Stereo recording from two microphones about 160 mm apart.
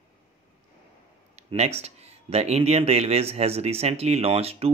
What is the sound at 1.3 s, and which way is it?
Speech, 40° right (ahead or behind).